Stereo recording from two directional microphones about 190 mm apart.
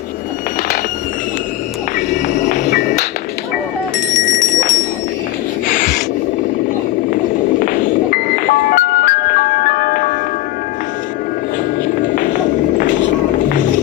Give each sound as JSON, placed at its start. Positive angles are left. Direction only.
{"t": 2.0, "sound": "music", "side_deg": 40}
{"t": 4.1, "sound": "a sound", "side_deg": 40}
{"t": 7.6, "sound": "music", "side_deg": 45}
{"t": 11.9, "sound": "music", "side_deg": 45}